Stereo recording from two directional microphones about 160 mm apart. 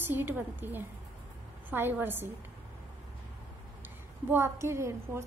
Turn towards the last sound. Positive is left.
turn(degrees=-15)  # may be behind; listen again after turning